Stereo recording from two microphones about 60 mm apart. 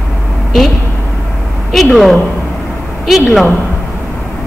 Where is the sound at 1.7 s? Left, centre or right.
Centre.